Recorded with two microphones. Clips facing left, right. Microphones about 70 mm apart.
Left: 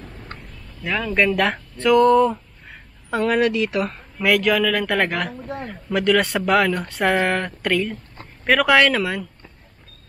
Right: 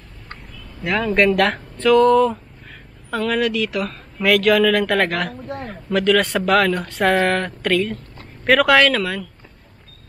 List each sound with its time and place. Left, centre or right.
0.8 s speech: centre
3.1 s speech: left
4.2 s speech: centre
9.0 s speech: centre